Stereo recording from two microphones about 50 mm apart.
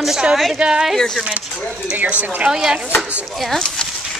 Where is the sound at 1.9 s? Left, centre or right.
Right.